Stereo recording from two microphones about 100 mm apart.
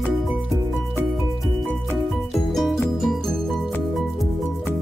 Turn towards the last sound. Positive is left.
turn(degrees=0)  # may be behind; listen again after turning